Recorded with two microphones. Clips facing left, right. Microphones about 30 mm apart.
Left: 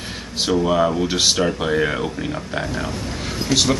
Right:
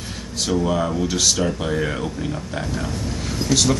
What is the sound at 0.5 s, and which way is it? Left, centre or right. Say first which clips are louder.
Speech: left 3 dB; centre.